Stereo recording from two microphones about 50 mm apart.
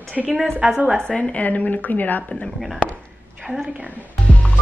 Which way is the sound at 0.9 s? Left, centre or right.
Centre.